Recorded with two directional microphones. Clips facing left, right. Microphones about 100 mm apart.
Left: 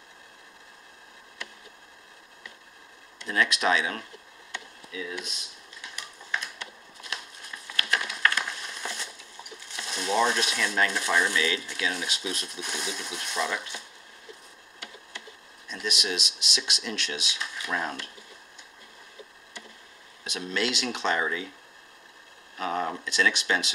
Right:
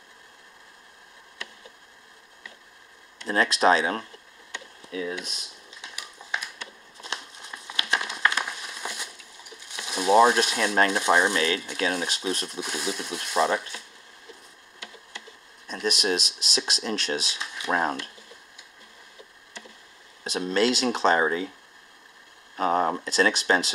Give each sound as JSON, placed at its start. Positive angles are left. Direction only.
{"t": 3.3, "sound": "speech", "side_deg": -35}
{"t": 5.9, "sound": "a sound", "side_deg": -10}
{"t": 7.0, "sound": "crumpling", "side_deg": -25}
{"t": 9.8, "sound": "a sound", "side_deg": -15}
{"t": 10.1, "sound": "speech", "side_deg": -45}
{"t": 12.5, "sound": "speech", "side_deg": -5}
{"t": 13.3, "sound": "speech", "side_deg": -45}
{"t": 15.7, "sound": "speech", "side_deg": -40}
{"t": 20.2, "sound": "speech", "side_deg": -35}
{"t": 22.6, "sound": "speech", "side_deg": -40}